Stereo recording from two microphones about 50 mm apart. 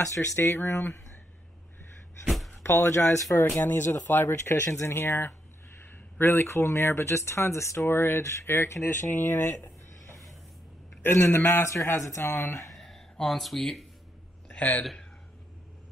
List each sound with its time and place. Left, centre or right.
0.4 s speech: left
2.2 s a sound: centre
2.6 s speech: left
3.3 s speech: left
7.8 s speech: left
11.6 s speech: left
12.2 s speech: left
12.7 s a sound: centre
14.5 s a sound: left